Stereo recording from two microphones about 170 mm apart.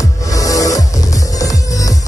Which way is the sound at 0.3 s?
20° left (ahead or behind).